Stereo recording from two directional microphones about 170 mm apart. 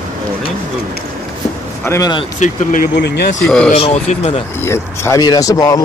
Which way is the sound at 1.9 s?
20° left (ahead or behind).